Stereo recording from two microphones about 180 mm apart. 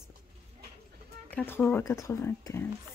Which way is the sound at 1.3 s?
10° left (ahead or behind).